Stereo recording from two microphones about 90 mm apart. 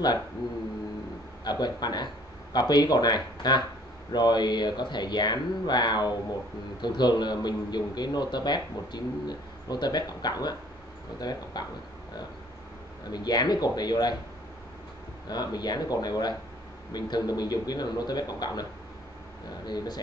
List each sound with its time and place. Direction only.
1.4 s a man's voice: 50° left (ahead or behind)
13.1 s a man's voice: 50° left (ahead or behind)
15.2 s a man's voice: 50° left (ahead or behind)